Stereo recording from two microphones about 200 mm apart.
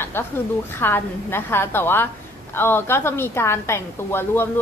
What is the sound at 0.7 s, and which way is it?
A woman's voice, 10° left (ahead or behind).